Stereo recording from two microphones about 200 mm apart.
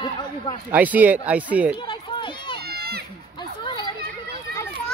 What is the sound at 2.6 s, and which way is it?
Run, 50° right (ahead or behind).